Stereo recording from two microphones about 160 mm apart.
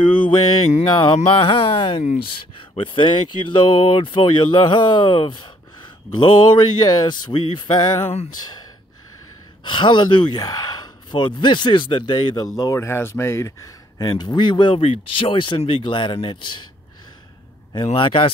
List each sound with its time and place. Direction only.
0.1 s speech: 35° left (ahead or behind)
9.7 s speech: 30° left (ahead or behind)
17.8 s speech: 30° left (ahead or behind)